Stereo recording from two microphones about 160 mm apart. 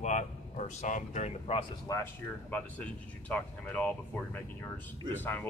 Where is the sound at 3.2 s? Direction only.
10° left (ahead or behind).